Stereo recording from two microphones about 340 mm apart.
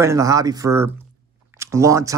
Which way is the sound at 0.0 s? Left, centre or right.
Centre.